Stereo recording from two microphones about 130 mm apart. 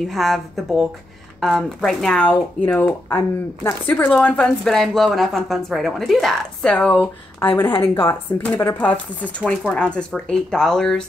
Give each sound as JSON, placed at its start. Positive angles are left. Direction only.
{"t": 0.1, "sound": "speech", "side_deg": 0}